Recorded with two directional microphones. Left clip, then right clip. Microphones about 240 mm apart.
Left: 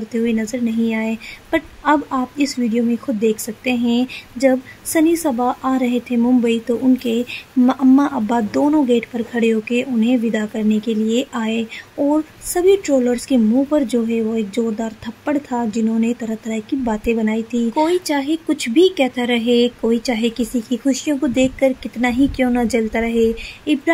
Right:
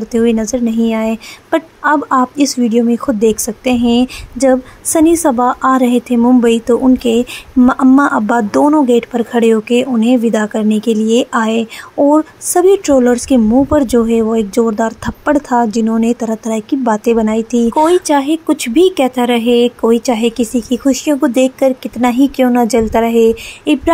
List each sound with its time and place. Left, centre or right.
0.1 s a woman's voice: centre